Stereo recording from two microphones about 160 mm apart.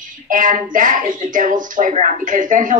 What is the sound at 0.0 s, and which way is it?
A woman's voice, 55° right (ahead or behind).